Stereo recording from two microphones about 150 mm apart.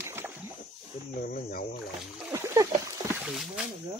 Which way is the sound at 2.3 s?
20° right (ahead or behind).